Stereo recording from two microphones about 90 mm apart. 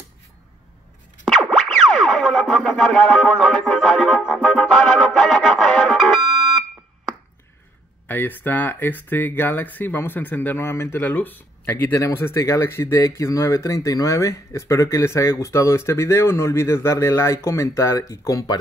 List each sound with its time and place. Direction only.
1.2 s music: centre (ahead or behind)
8.1 s speech: 20° left (ahead or behind)
11.9 s speech: 35° left (ahead or behind)